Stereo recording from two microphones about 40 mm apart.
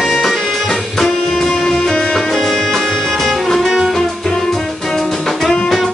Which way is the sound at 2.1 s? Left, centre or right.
Centre.